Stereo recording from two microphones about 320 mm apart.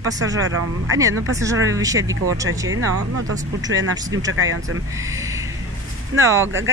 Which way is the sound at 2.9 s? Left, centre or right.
Right.